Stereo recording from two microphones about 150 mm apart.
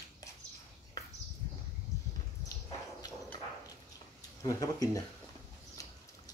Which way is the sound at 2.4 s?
25° left (ahead or behind).